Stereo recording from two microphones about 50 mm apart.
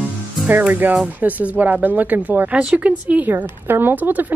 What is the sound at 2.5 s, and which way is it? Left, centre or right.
Speech, right.